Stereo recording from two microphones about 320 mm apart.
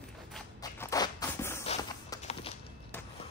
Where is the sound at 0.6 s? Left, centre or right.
Centre.